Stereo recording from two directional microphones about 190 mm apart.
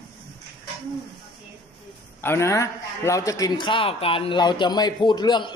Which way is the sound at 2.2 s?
15° left (ahead or behind).